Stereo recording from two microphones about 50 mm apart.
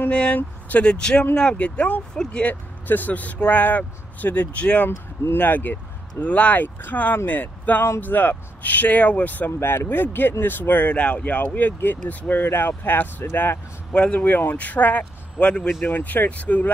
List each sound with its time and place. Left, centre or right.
0.1 s speech: left
0.4 s speech: left
0.8 s speech: centre
1.6 s speech: left
9.6 s speech: left
13.9 s speech: left
15.8 s speech: left